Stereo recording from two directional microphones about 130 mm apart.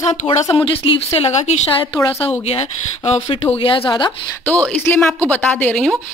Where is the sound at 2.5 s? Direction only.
50° left (ahead or behind).